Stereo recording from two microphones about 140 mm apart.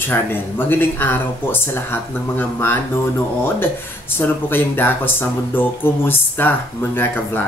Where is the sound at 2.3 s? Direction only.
15° left (ahead or behind).